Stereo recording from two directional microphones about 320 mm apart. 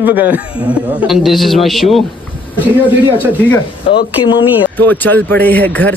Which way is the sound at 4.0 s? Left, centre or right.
Left.